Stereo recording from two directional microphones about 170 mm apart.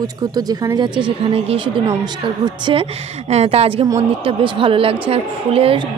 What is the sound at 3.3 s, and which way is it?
A woman's voice, 40° right (ahead or behind).